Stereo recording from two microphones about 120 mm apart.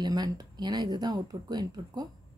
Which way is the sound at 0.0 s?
35° right (ahead or behind).